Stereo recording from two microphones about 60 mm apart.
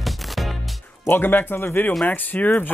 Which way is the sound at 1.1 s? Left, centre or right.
Left.